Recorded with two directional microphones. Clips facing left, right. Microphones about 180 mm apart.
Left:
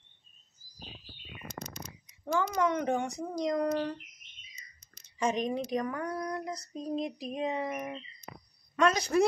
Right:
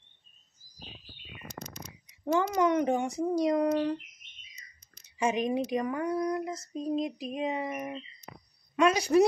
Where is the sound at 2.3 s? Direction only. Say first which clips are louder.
Right 3 dB; 15° right (ahead or behind).